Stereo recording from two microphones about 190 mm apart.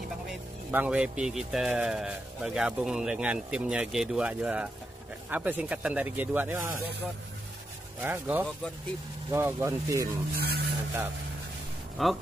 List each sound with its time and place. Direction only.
0.7 s a man's voice: 10° right (ahead or behind)
8.0 s speech: 10° right (ahead or behind)
10.3 s speech: 55° right (ahead or behind)
12.0 s a man's voice: centre (ahead or behind)